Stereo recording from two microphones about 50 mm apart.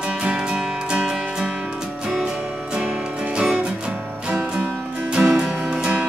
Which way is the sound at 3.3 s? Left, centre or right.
Centre.